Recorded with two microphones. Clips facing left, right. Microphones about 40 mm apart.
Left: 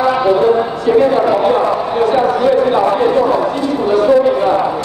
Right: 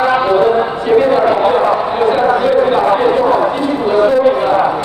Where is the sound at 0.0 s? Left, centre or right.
Right.